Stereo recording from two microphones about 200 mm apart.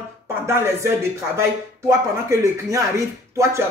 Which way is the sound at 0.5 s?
15° right (ahead or behind).